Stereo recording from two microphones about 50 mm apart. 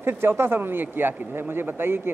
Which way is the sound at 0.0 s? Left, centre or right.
Right.